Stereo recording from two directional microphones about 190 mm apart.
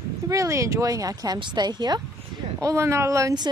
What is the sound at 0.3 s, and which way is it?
A woman's voice, 15° right (ahead or behind).